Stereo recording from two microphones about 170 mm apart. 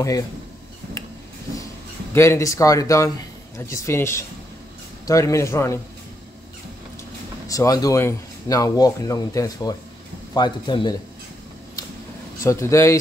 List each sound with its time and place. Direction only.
2.1 s a man's voice: 15° left (ahead or behind)
7.4 s speech: 20° left (ahead or behind)
12.4 s a man's voice: 15° left (ahead or behind)